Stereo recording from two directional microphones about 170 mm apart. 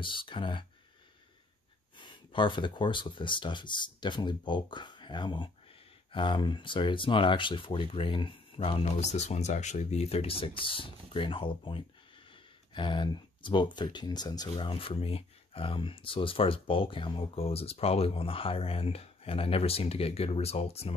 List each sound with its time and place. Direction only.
0.0 s speech: 30° left (ahead or behind)
2.0 s speech: 30° left (ahead or behind)